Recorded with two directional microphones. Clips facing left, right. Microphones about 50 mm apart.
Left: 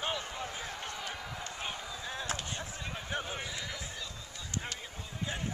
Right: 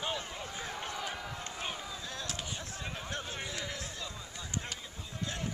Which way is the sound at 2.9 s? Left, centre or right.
Centre.